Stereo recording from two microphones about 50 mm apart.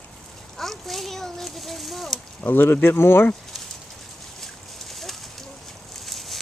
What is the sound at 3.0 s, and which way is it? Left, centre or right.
Speech, left.